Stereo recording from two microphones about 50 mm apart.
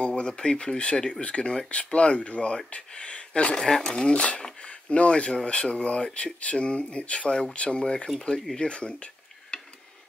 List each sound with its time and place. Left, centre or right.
0.0 s speech: left
3.6 s speech: centre
8.5 s dishes: left